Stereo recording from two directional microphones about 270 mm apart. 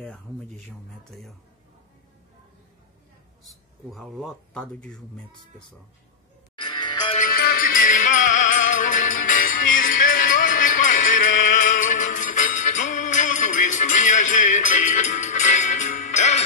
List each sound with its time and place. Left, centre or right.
3.4 s speech: centre
6.5 s music: centre
7.2 s music: left